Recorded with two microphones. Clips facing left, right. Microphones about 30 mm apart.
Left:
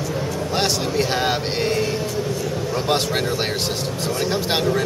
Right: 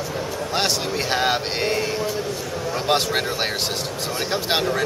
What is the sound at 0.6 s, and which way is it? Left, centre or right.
A man's voice, centre.